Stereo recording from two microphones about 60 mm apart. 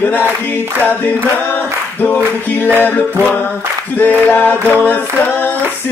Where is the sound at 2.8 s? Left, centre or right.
Left.